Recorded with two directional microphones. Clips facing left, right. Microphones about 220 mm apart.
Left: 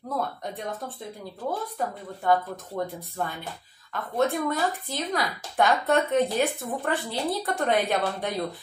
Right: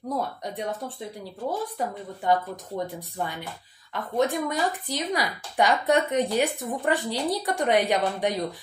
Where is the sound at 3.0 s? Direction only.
15° right (ahead or behind).